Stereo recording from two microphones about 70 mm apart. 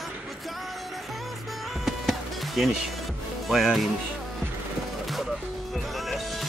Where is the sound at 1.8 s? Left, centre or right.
Centre.